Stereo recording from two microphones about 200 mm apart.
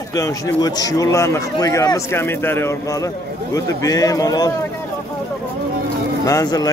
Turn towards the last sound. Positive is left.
turn(degrees=20)  # may be behind; listen again after turning